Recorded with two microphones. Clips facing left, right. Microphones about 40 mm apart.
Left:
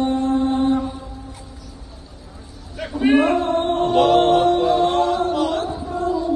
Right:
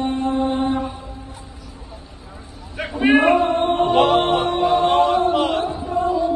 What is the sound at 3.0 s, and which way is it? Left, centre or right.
Music, right.